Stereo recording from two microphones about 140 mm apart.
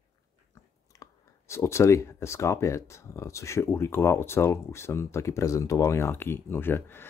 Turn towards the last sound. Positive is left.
turn(degrees=15)  # may be behind; listen again after turning